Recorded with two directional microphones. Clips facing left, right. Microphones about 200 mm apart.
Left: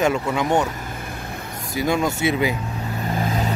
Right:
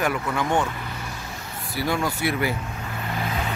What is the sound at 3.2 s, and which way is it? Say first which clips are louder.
Vehicle: left 4 dB; 40° left (ahead or behind).